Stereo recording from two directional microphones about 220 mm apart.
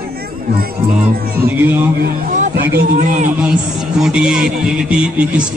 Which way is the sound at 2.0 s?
35° right (ahead or behind).